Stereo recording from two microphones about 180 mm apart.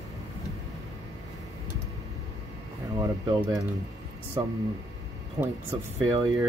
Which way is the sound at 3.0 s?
20° right (ahead or behind).